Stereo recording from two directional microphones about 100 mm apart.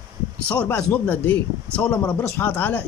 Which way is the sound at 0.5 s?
15° left (ahead or behind).